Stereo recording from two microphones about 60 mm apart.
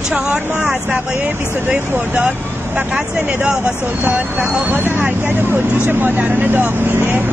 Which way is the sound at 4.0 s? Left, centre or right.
Right.